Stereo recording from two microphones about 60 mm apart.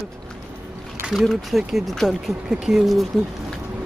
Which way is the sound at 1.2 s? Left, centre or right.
Centre.